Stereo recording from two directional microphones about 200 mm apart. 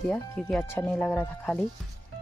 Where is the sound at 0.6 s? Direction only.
10° left (ahead or behind).